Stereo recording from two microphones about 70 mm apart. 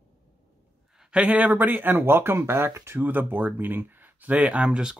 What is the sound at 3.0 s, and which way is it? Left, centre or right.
Speech, right.